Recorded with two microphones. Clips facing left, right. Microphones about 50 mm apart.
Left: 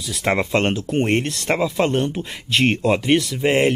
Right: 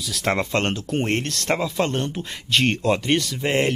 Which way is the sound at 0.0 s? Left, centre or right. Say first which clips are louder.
Left 2 dB; centre.